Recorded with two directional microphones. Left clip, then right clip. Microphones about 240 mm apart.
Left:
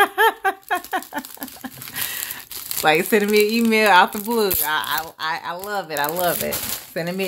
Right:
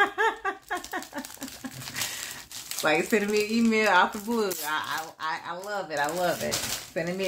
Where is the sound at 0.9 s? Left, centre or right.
Left.